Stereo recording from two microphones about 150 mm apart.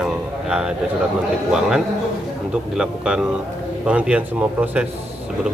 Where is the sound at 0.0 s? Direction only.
5° right (ahead or behind).